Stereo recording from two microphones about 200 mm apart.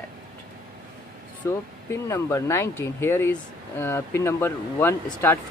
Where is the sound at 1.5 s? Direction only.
15° left (ahead or behind).